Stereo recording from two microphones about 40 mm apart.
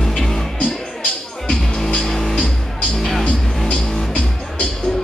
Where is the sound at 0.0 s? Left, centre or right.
Centre.